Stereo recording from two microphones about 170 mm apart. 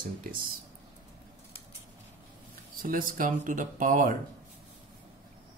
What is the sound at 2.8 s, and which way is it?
Speech, 55° right (ahead or behind).